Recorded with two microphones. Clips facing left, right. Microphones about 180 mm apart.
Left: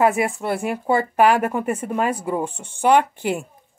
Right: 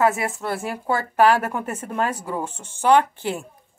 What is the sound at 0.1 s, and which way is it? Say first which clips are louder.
Speech: left 4 dB; 15° left (ahead or behind).